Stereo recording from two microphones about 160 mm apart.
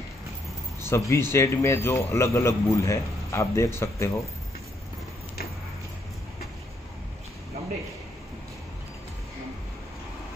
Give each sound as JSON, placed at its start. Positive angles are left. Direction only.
{"t": 0.8, "sound": "a man's voice", "side_deg": 15}